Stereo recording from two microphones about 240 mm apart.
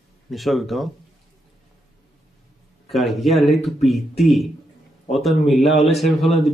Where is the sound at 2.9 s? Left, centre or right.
Centre.